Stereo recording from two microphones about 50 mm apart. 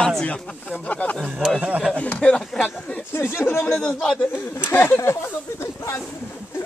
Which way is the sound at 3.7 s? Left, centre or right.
Centre.